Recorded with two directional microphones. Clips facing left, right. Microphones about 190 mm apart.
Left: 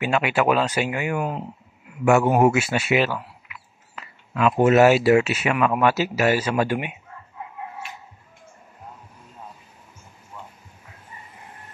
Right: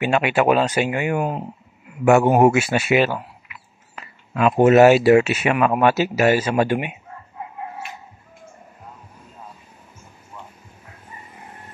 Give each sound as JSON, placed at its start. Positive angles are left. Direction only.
{"t": 0.5, "sound": "speech", "side_deg": -40}
{"t": 1.1, "sound": "speech", "side_deg": -35}
{"t": 3.9, "sound": "a sound", "side_deg": -40}
{"t": 4.6, "sound": "speech", "side_deg": -45}
{"t": 5.4, "sound": "speech", "side_deg": -40}